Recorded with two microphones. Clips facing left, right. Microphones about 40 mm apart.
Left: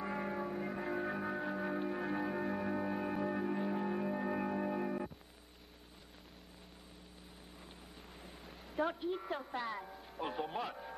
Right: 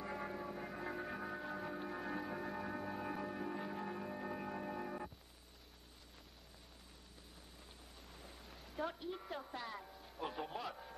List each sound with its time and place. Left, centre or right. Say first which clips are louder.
0.0 s music: left 5 dB; centre
8.1 s vehicle: left 1 dB; centre
8.5 s a sound: left 8 dB; centre
8.8 s a woman's voice: left 6 dB; left